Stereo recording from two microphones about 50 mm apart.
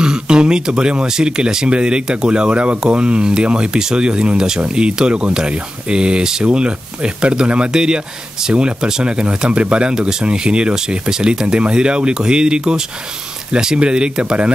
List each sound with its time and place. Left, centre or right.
0.0 s speech: centre